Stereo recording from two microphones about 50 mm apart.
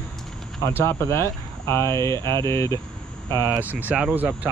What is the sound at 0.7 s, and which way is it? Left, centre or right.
Speech, left.